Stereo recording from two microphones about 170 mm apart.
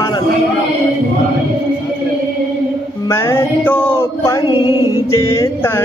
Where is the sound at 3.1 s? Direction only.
15° left (ahead or behind).